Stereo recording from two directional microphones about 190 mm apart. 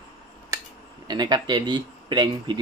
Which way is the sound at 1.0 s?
20° right (ahead or behind).